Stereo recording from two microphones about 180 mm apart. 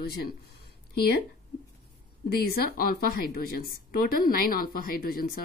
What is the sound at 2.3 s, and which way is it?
A woman's voice, 60° left (ahead or behind).